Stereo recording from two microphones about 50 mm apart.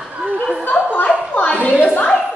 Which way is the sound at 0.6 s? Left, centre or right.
Left.